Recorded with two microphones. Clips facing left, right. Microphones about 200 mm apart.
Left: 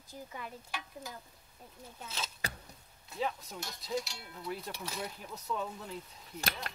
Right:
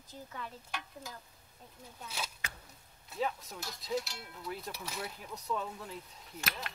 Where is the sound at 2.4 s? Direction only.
35° left (ahead or behind).